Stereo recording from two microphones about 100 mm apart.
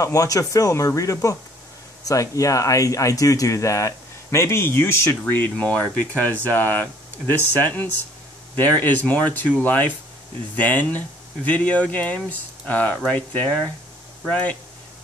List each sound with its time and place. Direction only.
0.0 s speech: 35° left (ahead or behind); by 14.6 s 10° left (ahead or behind)